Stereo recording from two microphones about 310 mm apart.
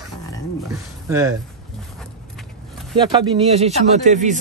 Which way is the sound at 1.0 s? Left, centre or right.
Centre.